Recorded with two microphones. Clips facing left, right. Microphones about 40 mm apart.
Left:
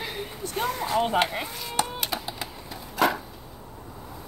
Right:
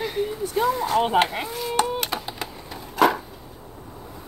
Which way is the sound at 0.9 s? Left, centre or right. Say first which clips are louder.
Right 3 dB; right.